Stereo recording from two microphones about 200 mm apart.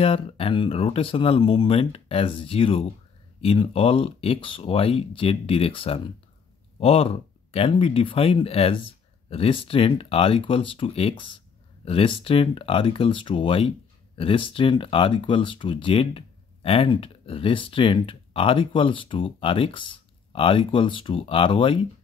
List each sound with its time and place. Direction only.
0.0 s speech: 30° left (ahead or behind)